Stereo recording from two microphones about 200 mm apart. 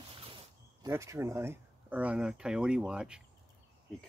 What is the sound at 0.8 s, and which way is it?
Speech, 15° right (ahead or behind).